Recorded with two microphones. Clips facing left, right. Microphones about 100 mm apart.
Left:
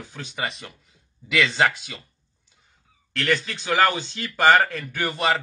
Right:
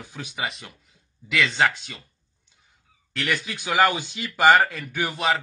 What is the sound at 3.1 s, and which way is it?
Speech, 10° right (ahead or behind).